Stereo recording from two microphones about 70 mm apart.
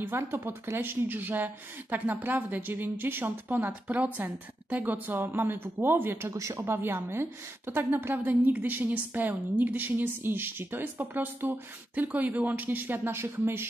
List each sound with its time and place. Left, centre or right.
0.0 s a woman's voice: right
6.3 s speech: right
6.6 s a woman's voice: right